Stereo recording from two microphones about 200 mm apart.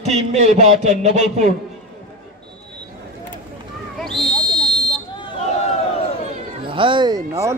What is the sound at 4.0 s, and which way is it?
Owl, centre (ahead or behind).